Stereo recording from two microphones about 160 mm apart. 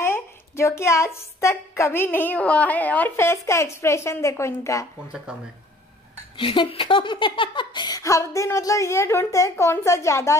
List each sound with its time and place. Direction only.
0.0 s a woman's voice: 15° left (ahead or behind)
5.3 s speech: 5° right (ahead or behind)
6.3 s speech: 30° left (ahead or behind)